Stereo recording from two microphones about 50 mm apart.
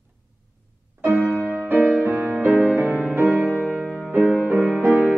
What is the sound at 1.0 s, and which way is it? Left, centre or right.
Music, right.